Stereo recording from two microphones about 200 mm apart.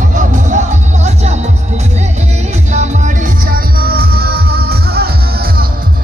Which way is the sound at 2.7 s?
35° right (ahead or behind).